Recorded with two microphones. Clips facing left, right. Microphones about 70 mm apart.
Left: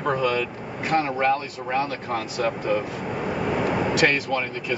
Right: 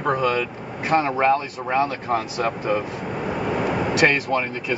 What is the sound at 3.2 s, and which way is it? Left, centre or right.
Vehicle, centre.